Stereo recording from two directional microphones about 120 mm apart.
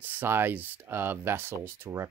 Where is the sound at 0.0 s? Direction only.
15° right (ahead or behind).